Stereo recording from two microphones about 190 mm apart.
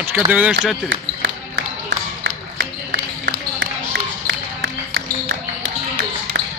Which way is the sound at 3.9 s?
60° right (ahead or behind).